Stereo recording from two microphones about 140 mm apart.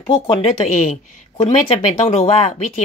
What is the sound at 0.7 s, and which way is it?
Speech, 65° left (ahead or behind).